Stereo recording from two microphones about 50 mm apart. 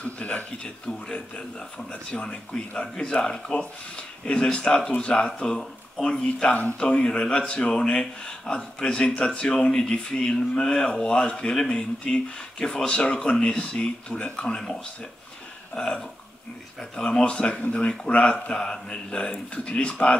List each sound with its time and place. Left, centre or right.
0.0 s speech: left; by 6.2 s centre
6.8 s speech: centre